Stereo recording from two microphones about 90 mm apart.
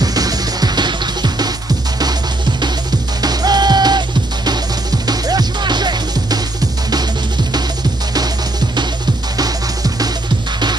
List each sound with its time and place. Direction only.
0.0 s music: 45° right (ahead or behind)
3.2 s music: 50° right (ahead or behind)
5.0 s music: 45° right (ahead or behind)
8.1 s music: 50° right (ahead or behind)